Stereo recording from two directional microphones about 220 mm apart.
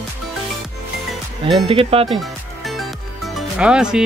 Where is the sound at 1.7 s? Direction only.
25° right (ahead or behind).